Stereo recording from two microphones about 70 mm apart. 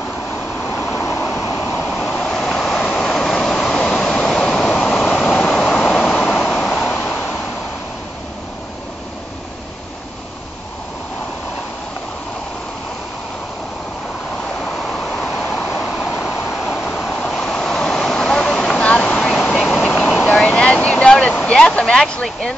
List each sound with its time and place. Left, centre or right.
0.7 s vehicle: left
2.1 s waves: centre
14.9 s vehicle: centre
15.8 s vehicle: centre
16.7 s waves: centre
19.9 s vehicle: centre